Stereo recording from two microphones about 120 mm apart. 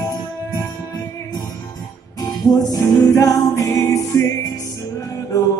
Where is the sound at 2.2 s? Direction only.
30° left (ahead or behind).